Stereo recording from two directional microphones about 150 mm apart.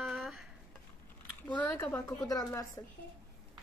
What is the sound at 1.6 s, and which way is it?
A woman's voice, 15° left (ahead or behind).